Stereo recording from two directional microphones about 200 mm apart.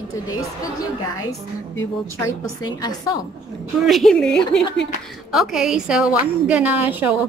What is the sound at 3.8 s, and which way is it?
A woman's voice, centre (ahead or behind).